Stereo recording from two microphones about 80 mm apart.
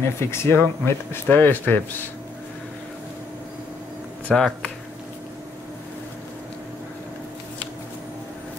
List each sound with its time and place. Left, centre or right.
0.2 s speech: left
4.3 s speech: centre